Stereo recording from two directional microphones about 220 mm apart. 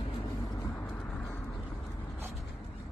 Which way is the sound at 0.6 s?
10° left (ahead or behind).